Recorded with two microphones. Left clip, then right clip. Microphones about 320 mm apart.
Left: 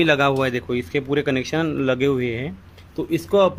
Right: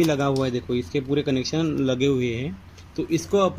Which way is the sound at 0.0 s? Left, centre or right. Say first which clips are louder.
Left 5 dB; left.